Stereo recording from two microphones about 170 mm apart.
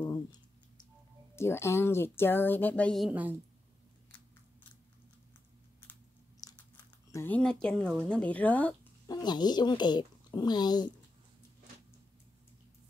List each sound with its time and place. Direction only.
0.0 s a sound: 25° left (ahead or behind)
1.3 s speech: 15° left (ahead or behind)
3.1 s a woman's voice: 10° right (ahead or behind)
6.4 s a sound: 20° left (ahead or behind)
7.1 s speech: 15° left (ahead or behind)
9.0 s speech: 25° left (ahead or behind)